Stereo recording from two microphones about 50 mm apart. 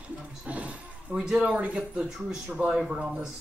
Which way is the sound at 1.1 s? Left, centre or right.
Centre.